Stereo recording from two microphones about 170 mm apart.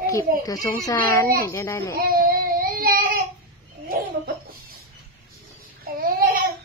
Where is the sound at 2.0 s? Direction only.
60° right (ahead or behind).